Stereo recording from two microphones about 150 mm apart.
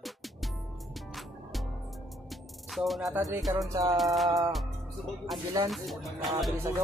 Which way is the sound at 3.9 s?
Centre (ahead or behind).